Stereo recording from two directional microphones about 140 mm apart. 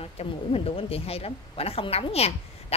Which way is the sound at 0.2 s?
45° left (ahead or behind).